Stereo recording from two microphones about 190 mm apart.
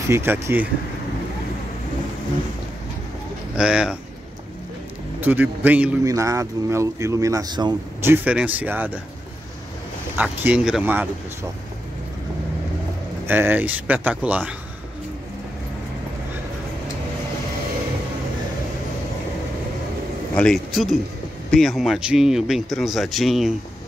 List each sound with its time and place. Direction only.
0.1 s speech: 10° right (ahead or behind)
3.5 s a man's voice: 5° right (ahead or behind)
5.2 s speech: 10° right (ahead or behind)
8.1 s speech: 10° right (ahead or behind)
10.1 s speech: 5° right (ahead or behind)
13.3 s speech: 10° right (ahead or behind)
20.3 s a man's voice: centre (ahead or behind)